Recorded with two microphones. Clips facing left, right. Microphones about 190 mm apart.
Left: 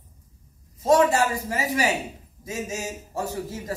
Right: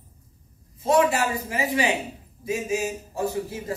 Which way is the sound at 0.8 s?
40° left (ahead or behind).